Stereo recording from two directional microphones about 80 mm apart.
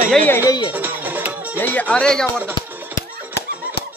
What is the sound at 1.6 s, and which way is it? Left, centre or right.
Speech, left.